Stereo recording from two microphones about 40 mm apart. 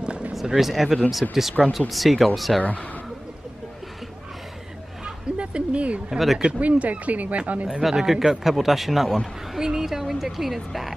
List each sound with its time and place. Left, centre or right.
0.0 s a sound: right
0.3 s a man's voice: centre
2.6 s speech: left
5.0 s a sound: right
6.0 s a man's voice: centre
6.6 s speech: right
7.8 s a man's voice: centre